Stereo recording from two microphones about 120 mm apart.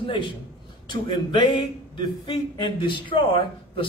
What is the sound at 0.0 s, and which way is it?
A man's voice, 45° left (ahead or behind).